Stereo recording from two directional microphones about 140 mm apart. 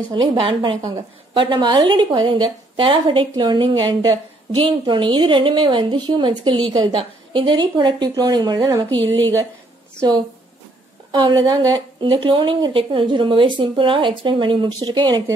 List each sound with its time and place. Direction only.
0.1 s a woman's voice: 35° right (ahead or behind)
11.1 s a woman's voice: 30° right (ahead or behind)